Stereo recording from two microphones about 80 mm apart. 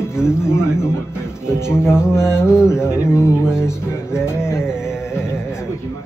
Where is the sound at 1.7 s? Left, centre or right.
Left.